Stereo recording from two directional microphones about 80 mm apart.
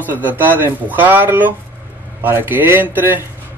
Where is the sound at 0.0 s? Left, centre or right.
Right.